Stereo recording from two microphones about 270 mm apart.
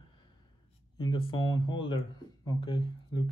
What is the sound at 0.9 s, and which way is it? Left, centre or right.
Speech, centre.